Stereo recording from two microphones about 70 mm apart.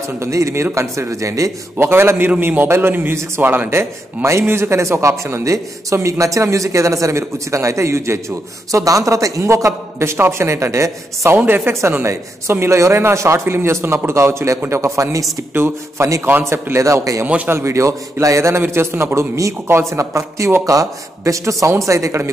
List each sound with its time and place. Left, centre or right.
0.2 s speech: right
1.8 s a man's voice: right
3.7 s speech: right
8.7 s speech: right
11.3 s speech: right
15.5 s speech: right
16.8 s speech: right
17.5 s speech: right